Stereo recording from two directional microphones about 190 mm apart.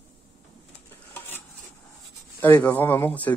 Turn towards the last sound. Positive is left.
turn(degrees=10)  # may be behind; listen again after turning